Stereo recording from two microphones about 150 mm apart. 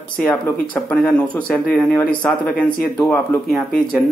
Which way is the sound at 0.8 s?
5° left (ahead or behind).